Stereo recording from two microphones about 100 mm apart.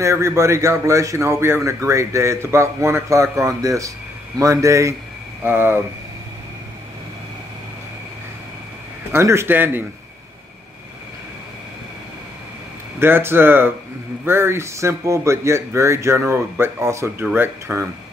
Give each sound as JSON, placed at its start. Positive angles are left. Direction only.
{"t": 0.0, "sound": "a man's voice", "side_deg": -30}
{"t": 9.1, "sound": "a man's voice", "side_deg": -25}
{"t": 13.0, "sound": "a man's voice", "side_deg": -20}